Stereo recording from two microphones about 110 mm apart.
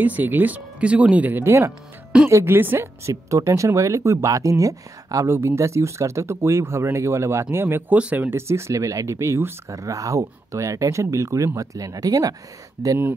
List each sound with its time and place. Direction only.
0.0 s speech: 15° right (ahead or behind)